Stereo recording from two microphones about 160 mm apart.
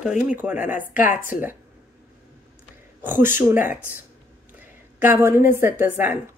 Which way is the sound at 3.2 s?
10° right (ahead or behind).